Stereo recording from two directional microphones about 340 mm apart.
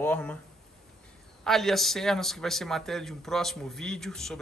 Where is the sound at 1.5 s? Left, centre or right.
Centre.